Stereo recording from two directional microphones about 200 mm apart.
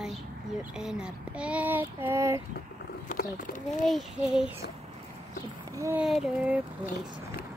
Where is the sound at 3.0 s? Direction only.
40° left (ahead or behind).